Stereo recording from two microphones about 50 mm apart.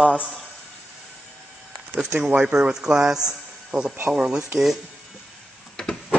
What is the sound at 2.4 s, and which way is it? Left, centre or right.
Speech, centre.